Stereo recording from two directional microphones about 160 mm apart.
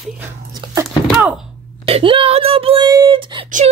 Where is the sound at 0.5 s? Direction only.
15° right (ahead or behind).